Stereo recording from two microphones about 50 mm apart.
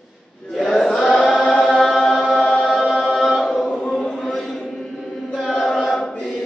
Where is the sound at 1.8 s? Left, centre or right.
Centre.